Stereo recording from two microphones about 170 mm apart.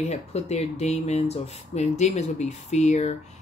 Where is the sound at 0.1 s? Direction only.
40° left (ahead or behind).